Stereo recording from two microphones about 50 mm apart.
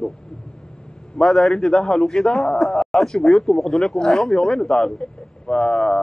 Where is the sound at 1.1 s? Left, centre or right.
Centre.